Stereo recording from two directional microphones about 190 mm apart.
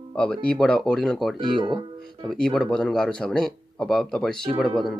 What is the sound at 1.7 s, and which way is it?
Speech, centre (ahead or behind).